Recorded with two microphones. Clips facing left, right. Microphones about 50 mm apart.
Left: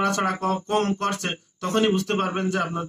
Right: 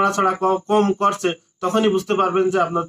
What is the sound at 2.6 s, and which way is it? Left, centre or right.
Speech, right.